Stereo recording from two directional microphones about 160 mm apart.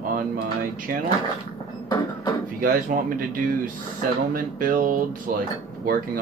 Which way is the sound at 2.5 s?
60° right (ahead or behind).